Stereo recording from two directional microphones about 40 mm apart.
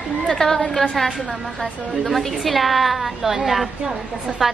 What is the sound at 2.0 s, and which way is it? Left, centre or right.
A woman's voice, centre.